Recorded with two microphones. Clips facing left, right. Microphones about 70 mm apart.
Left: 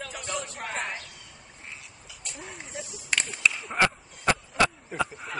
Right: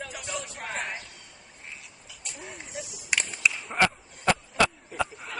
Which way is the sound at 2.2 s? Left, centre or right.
Centre.